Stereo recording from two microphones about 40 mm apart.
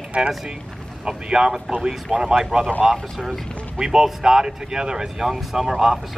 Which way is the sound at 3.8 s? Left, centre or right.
Centre.